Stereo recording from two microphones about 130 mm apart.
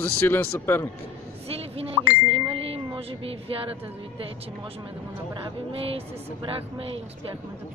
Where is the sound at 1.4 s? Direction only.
50° right (ahead or behind).